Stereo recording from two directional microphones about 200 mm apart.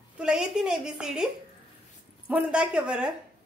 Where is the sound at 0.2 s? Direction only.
5° right (ahead or behind).